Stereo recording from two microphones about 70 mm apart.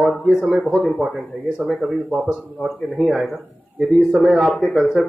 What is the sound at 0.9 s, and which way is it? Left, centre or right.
Speech, centre.